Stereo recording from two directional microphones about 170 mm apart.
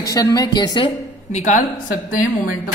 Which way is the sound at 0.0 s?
20° left (ahead or behind).